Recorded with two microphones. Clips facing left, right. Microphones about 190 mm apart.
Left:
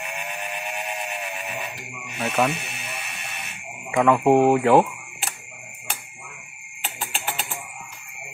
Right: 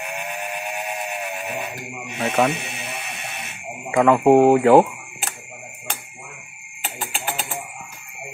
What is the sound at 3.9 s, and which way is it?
Speech, centre (ahead or behind).